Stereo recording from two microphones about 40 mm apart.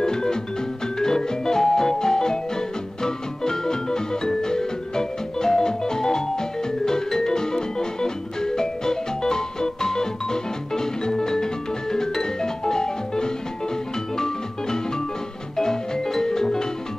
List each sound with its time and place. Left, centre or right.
0.0 s music: centre